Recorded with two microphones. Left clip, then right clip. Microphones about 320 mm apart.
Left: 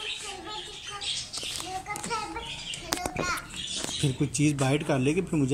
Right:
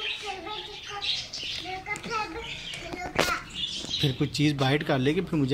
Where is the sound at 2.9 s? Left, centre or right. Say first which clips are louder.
Left 7 dB; left.